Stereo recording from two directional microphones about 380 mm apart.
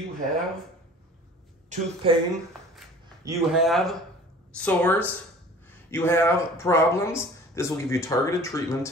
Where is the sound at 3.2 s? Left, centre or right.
Centre.